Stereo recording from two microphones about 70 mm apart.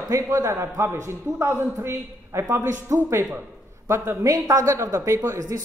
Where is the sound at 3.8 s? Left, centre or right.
Right.